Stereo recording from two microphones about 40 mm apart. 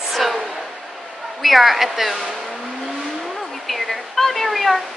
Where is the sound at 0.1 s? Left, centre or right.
Centre.